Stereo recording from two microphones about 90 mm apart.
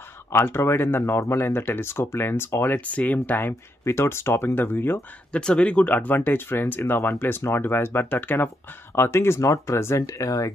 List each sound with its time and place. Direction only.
0.3 s speech: 25° left (ahead or behind)
2.8 s speech: 15° left (ahead or behind)
5.4 s speech: 10° left (ahead or behind); by 10.5 s 40° left (ahead or behind)